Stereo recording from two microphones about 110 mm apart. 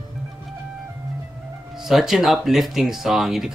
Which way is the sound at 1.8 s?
5° right (ahead or behind).